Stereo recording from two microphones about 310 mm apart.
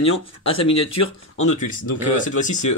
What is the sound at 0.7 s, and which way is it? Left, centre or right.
Speech, left.